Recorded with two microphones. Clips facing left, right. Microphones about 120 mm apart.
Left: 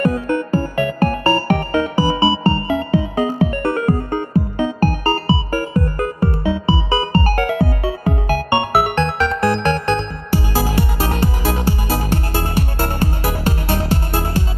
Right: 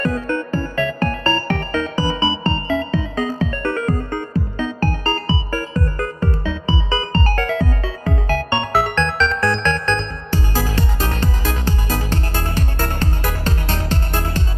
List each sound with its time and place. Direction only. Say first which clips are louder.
0.0 s music: left 3 dB; 15° left (ahead or behind)
12.5 s music: left 3 dB; 15° left (ahead or behind)